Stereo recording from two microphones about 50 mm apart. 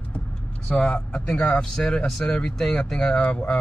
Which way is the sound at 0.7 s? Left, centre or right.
Centre.